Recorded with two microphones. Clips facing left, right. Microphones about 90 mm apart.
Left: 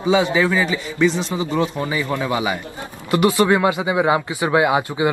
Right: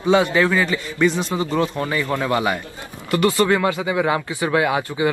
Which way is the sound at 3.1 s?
20° left (ahead or behind).